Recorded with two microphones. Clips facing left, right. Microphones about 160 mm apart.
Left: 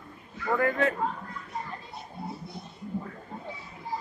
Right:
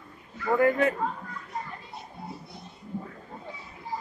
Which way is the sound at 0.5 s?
10° right (ahead or behind).